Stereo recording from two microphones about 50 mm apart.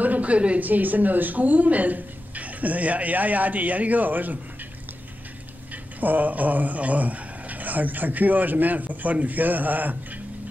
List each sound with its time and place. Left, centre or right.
0.0 s speech: right
5.9 s speech: right